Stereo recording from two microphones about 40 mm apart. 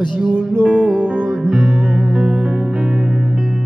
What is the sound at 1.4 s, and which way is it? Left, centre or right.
Music, centre.